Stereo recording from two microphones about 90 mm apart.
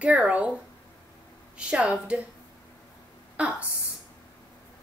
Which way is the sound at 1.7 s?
10° right (ahead or behind).